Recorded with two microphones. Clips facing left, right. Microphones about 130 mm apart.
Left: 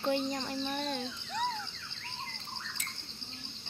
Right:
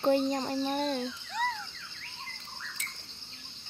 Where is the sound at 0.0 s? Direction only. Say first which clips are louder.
Right 6 dB; 40° right (ahead or behind).